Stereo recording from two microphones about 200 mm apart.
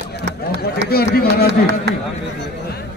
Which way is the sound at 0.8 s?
50° left (ahead or behind).